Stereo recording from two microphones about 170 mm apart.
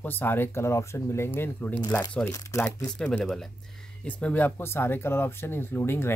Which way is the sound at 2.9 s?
5° left (ahead or behind).